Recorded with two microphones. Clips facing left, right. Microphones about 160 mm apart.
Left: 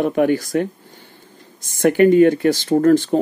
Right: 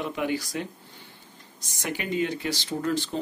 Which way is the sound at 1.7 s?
55° left (ahead or behind).